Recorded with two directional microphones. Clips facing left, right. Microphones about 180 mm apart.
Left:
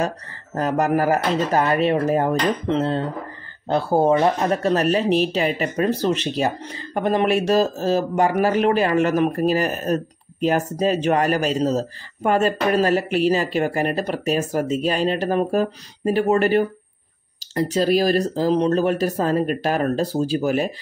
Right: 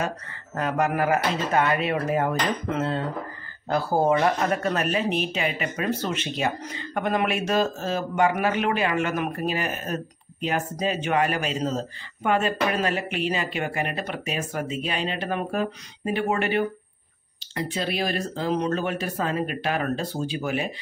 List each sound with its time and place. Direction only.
0.6 s speech: 40° left (ahead or behind)